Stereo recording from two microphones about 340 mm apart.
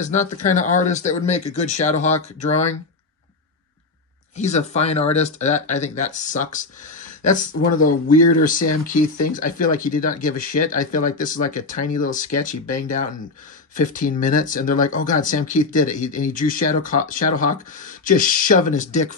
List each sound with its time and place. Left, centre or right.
0.0 s speech: left
4.4 s speech: centre